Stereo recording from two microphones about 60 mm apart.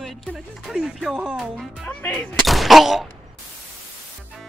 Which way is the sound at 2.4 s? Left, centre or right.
Centre.